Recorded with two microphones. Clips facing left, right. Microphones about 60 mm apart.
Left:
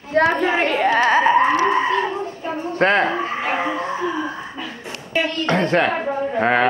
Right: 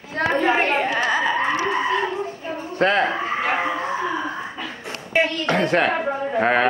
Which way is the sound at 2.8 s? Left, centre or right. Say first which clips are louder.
Left 2 dB; left.